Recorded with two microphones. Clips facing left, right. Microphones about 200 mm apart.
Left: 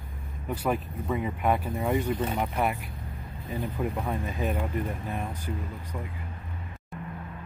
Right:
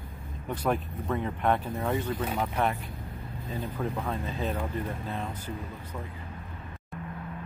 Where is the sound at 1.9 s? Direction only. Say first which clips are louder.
Left 4 dB; 20° left (ahead or behind).